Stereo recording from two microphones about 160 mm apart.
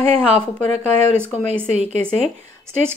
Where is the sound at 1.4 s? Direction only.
45° right (ahead or behind).